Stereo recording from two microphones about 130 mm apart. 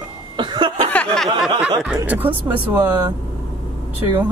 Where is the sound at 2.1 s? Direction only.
10° right (ahead or behind).